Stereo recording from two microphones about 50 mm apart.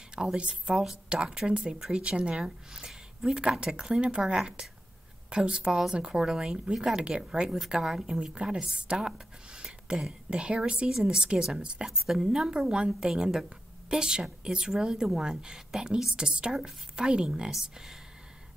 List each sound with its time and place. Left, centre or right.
0.1 s a woman's voice: centre
4.2 s a woman's voice: centre
5.3 s a woman's voice: centre
9.6 s a sound: centre
10.4 s a woman's voice: right